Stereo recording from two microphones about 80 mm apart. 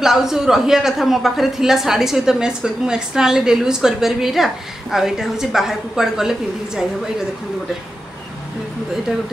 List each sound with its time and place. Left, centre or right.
0.0 s a woman's voice: centre